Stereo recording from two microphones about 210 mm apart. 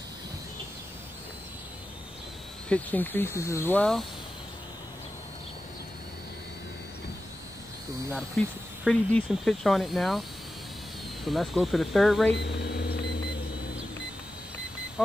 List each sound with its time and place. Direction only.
2.7 s speech: 10° left (ahead or behind)
8.4 s speech: 5° left (ahead or behind)
11.2 s speech: centre (ahead or behind)
12.4 s a sound: 50° left (ahead or behind)
15.0 s speech: centre (ahead or behind)